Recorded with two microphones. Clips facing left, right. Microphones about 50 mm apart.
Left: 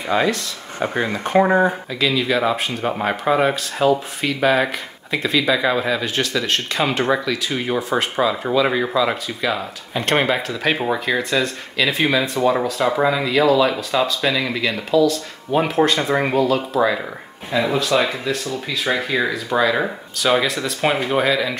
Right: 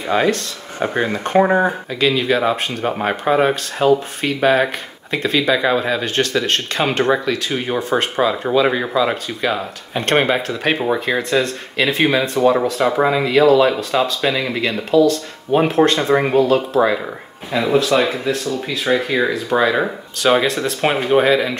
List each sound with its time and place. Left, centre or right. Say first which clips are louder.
0.1 s speech: right 2 dB; right
18.9 s speech: right 4 dB; centre
19.5 s speech: right 1 dB; right